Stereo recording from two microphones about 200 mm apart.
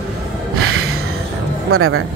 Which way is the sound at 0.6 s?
90° right.